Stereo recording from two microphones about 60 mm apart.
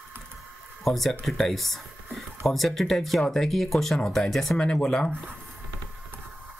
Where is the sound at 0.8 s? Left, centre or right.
Centre.